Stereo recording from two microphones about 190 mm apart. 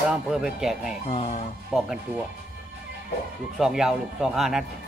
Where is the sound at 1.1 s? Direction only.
30° left (ahead or behind).